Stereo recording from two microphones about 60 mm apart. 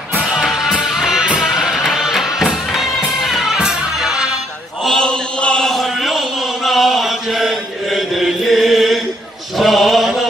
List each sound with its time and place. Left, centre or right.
0.2 s music: centre
3.5 s music: centre
4.8 s chant: centre